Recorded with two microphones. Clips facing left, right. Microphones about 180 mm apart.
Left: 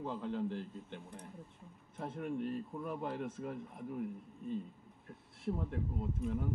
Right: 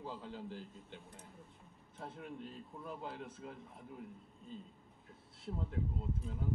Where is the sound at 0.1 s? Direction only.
60° left (ahead or behind).